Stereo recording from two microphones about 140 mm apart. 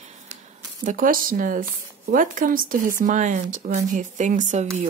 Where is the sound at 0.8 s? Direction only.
75° right (ahead or behind); by 4.6 s 60° right (ahead or behind).